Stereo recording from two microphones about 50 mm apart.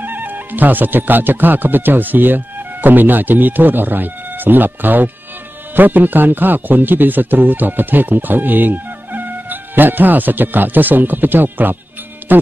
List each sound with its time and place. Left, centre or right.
0.0 s speech: right